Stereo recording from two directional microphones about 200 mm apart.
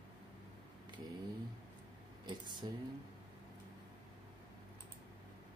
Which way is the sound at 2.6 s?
25° right (ahead or behind).